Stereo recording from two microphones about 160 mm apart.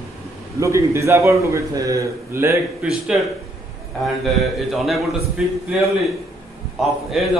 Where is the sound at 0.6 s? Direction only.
20° right (ahead or behind).